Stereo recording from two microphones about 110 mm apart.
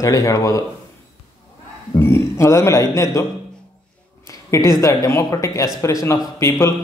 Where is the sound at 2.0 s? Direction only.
25° left (ahead or behind).